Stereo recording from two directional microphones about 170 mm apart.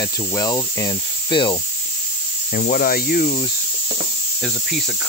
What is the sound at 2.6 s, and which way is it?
Speech, 55° left (ahead or behind).